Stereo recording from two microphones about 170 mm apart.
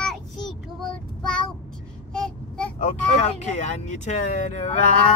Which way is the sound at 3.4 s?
45° left (ahead or behind).